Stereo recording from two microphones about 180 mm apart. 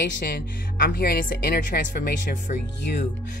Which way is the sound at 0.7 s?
55° left (ahead or behind).